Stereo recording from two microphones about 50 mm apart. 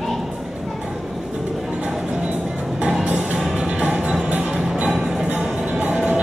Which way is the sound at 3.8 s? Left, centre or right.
Right.